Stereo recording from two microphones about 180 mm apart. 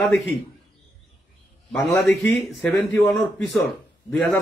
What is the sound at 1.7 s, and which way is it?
A man's voice, centre (ahead or behind).